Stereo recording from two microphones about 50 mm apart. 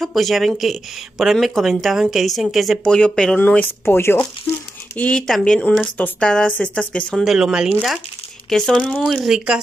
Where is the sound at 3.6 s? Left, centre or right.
Left.